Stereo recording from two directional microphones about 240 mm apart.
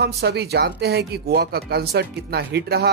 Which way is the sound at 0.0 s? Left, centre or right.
Right.